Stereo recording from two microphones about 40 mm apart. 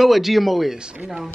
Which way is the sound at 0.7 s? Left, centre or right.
Right.